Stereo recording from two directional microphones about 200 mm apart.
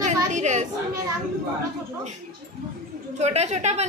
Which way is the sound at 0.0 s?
35° right (ahead or behind).